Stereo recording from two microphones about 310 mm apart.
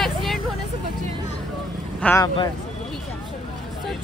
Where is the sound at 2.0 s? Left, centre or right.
Centre.